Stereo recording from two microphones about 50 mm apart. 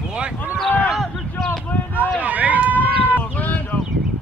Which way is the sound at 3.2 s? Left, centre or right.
Left.